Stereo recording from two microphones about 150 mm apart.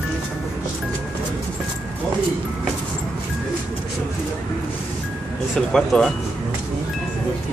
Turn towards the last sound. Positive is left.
turn(degrees=0)  # may be behind; listen again after turning